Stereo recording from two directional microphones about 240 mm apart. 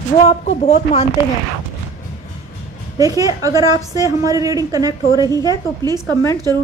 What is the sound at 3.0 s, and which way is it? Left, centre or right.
A woman's voice, centre.